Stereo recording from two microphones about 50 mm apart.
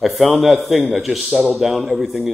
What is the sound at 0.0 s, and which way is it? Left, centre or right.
A man's voice, centre.